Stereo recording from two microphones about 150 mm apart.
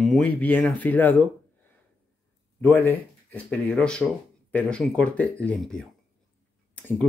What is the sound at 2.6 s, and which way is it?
Speech, 15° left (ahead or behind).